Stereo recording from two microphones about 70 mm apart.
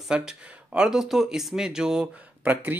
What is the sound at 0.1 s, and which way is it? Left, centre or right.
Speech, centre.